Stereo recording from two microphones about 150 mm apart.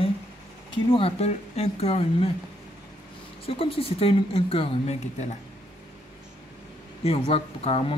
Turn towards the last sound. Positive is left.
turn(degrees=40)  # may be behind; listen again after turning